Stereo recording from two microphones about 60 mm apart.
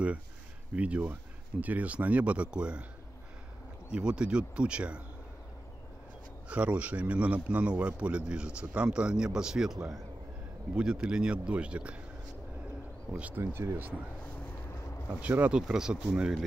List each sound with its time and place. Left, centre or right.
0.7 s speech: right
3.9 s a man's voice: centre
6.5 s a man's voice: right
13.1 s speech: right
13.5 s speech: right
14.7 s a sound: left
15.2 s speech: right
15.5 s a man's voice: centre